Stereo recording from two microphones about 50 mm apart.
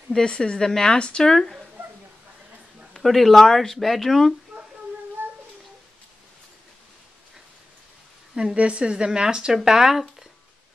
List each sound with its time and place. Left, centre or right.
0.1 s speech: centre
2.9 s speech: centre
8.4 s a woman's voice: centre